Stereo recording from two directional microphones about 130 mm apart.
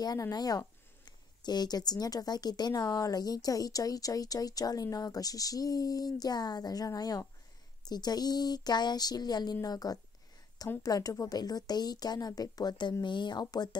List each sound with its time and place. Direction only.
0.0 s a woman's voice: 30° left (ahead or behind)